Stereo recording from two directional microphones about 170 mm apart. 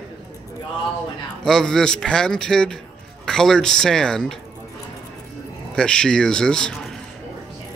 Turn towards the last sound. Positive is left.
turn(degrees=0)  # may be behind; listen again after turning